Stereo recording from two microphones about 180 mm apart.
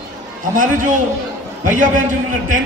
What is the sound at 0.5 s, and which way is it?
A man's voice, 45° right (ahead or behind).